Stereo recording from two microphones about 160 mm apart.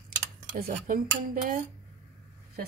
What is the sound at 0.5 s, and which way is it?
Speech, 65° right (ahead or behind).